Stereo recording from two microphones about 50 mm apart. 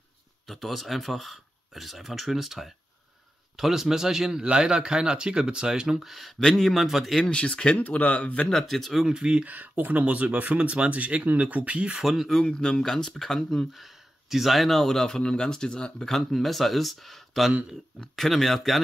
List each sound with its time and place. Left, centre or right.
0.5 s a man's voice: centre
7.2 s speech: left
8.5 s speech: centre
9.0 s speech: centre
9.5 s speech: right
12.0 s speech: centre
12.4 s speech: centre
16.1 s speech: centre